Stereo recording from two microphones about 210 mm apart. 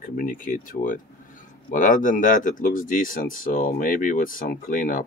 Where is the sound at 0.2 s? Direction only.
40° left (ahead or behind).